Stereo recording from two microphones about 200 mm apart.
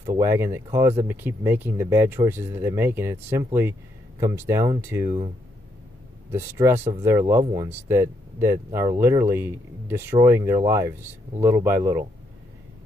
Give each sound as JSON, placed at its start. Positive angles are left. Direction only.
{"t": 0.0, "sound": "speech", "side_deg": -15}
{"t": 6.3, "sound": "speech", "side_deg": -15}